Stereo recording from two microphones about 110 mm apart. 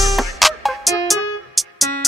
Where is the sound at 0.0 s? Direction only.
Centre (ahead or behind).